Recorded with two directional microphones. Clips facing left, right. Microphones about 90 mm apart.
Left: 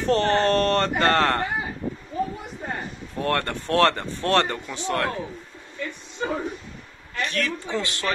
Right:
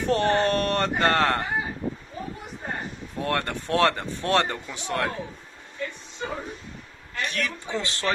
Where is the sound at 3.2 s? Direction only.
15° right (ahead or behind).